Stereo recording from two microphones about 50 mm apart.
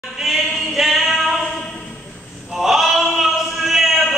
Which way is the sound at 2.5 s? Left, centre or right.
Centre.